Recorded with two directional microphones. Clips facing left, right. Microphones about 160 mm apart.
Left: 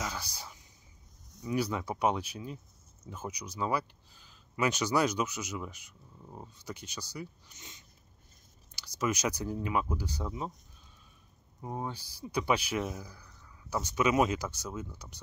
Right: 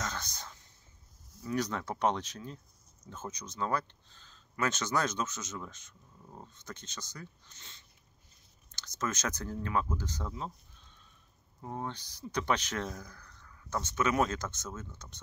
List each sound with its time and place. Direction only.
0.0 s a sound: 10° left (ahead or behind)
1.4 s speech: 10° left (ahead or behind)
11.6 s speech: 10° left (ahead or behind)